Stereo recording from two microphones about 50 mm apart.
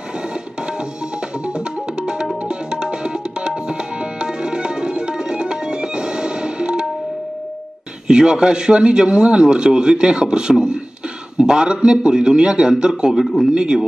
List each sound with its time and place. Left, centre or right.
1.4 s music: centre
2.4 s tabla: centre
8.1 s speech: centre
13.5 s speech: centre